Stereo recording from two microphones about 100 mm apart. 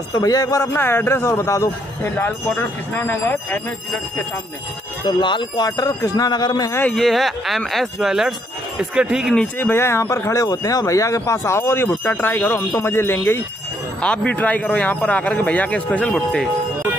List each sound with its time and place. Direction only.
0.1 s speech: 40° left (ahead or behind)
0.7 s speech: 20° left (ahead or behind)
5.0 s speech: 55° left (ahead or behind)
5.7 s speech: 35° left (ahead or behind)
6.9 s speech: 5° left (ahead or behind)
9.6 s speech: 25° left (ahead or behind)
14.0 s speech: 10° left (ahead or behind)